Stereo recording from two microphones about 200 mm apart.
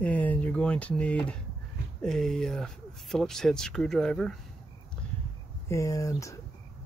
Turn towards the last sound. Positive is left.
turn(degrees=15)  # may be behind; listen again after turning